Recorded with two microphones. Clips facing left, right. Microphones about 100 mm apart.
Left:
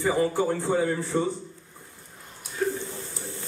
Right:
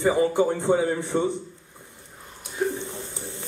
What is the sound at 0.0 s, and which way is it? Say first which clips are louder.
Speech: right 3 dB; 20° right (ahead or behind).